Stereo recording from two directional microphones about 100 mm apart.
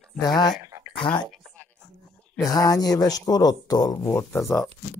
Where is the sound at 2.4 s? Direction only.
35° left (ahead or behind).